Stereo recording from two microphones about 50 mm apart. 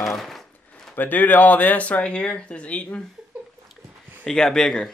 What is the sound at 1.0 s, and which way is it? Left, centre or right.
Speech, left.